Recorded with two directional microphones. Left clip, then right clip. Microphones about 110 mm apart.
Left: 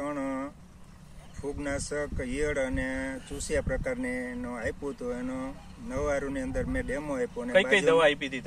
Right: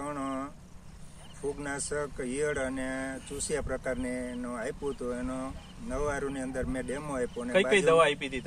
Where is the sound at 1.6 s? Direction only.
20° right (ahead or behind).